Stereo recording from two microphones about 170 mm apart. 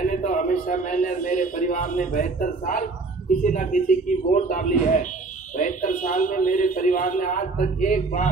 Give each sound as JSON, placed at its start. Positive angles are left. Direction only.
{"t": 0.0, "sound": "a man's voice", "side_deg": 50}